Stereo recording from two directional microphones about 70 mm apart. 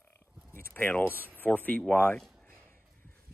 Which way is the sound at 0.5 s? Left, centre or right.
Left.